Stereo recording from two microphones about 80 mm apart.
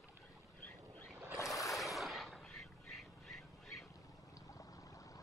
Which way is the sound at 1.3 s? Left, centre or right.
Left.